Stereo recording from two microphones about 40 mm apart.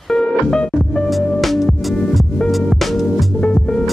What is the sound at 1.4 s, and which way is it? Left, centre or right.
Music, centre.